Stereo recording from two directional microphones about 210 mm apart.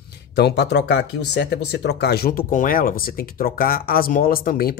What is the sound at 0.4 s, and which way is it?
Speech, 50° left (ahead or behind).